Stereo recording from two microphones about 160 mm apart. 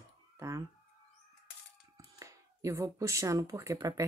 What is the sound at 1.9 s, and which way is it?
Speech, 20° right (ahead or behind).